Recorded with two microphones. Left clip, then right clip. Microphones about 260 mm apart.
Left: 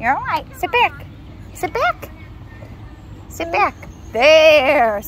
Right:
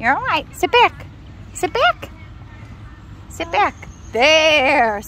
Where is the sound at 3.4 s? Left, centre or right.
Right.